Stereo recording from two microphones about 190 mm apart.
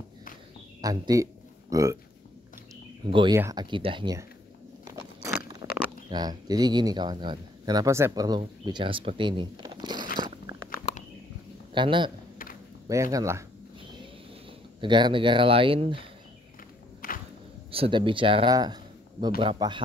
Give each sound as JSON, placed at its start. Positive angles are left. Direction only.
{"t": 0.7, "sound": "a sound", "side_deg": -20}
{"t": 3.1, "sound": "speech", "side_deg": -25}
{"t": 3.3, "sound": "speech", "side_deg": -15}
{"t": 3.7, "sound": "speech", "side_deg": -25}
{"t": 4.8, "sound": "crunch", "side_deg": -15}
{"t": 5.6, "sound": "a sound", "side_deg": -20}
{"t": 6.0, "sound": "speech", "side_deg": -20}
{"t": 10.1, "sound": "crunch", "side_deg": -20}
{"t": 10.9, "sound": "a sound", "side_deg": 35}
{"t": 11.7, "sound": "a man's voice", "side_deg": -25}
{"t": 14.8, "sound": "speech", "side_deg": -25}
{"t": 17.0, "sound": "walk", "side_deg": 50}
{"t": 17.6, "sound": "speech", "side_deg": -30}